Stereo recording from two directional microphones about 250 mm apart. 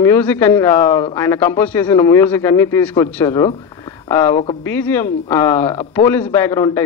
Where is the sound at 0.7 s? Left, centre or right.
Left.